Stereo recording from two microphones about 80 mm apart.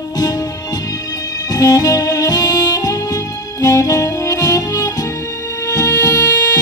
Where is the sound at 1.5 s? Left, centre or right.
Left.